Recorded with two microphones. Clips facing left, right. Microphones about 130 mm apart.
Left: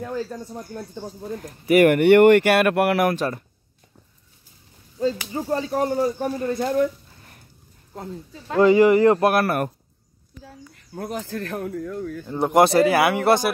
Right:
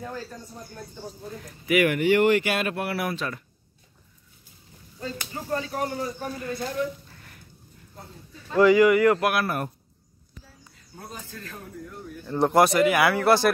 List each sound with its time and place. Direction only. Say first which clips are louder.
1.4 s speech: left 6 dB; 45° left (ahead or behind)
2.0 s speech: left 7 dB; 60° left (ahead or behind)
3.2 s a man's voice: left 7 dB; 40° left (ahead or behind)
5.3 s a man's voice: left 6 dB; 30° left (ahead or behind)
7.9 s speech: left 11 dB; 90° left
8.5 s speech: left 2 dB; 30° left (ahead or behind)
9.4 s speech: left 5 dB; 65° left (ahead or behind); by 12.2 s 90° left
12.3 s speech: left 2 dB; 15° left (ahead or behind)
12.6 s a man's voice: left 3 dB; 35° left (ahead or behind)
13.1 s speech: left 1 dB; 20° left (ahead or behind)